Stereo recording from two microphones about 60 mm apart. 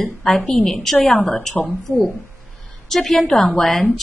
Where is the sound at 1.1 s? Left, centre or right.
Left.